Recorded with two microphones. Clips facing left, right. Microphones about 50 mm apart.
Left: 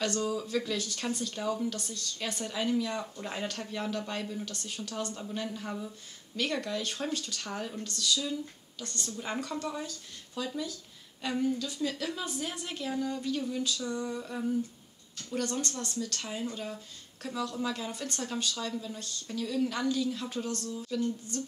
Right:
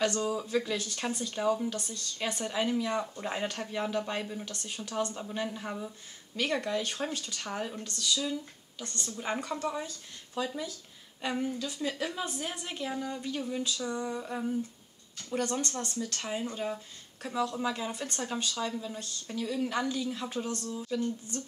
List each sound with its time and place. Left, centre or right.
0.0 s a woman's voice: centre
15.2 s speech: right
16.2 s speech: centre
20.7 s a woman's voice: centre
21.3 s speech: right